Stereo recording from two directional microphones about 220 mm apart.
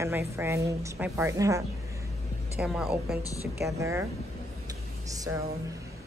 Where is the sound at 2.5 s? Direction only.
5° right (ahead or behind).